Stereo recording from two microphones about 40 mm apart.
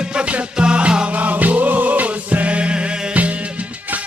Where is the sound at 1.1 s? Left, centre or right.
Right.